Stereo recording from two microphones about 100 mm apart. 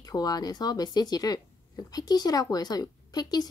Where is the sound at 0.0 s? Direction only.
40° left (ahead or behind).